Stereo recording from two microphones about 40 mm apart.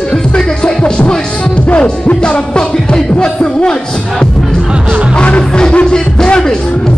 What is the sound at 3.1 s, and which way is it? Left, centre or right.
Speech, left.